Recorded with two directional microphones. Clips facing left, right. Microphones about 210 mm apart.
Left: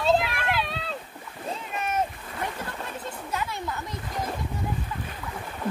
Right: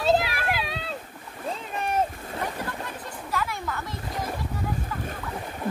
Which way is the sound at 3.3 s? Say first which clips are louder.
Right 2 dB; 20° left (ahead or behind).